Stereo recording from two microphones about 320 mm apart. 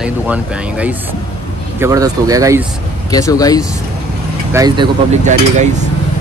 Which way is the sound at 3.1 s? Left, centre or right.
Centre.